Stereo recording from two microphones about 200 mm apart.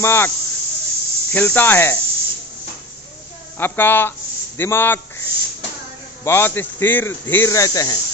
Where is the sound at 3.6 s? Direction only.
10° left (ahead or behind).